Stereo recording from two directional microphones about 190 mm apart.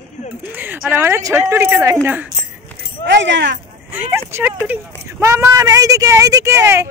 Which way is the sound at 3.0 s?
70° right (ahead or behind).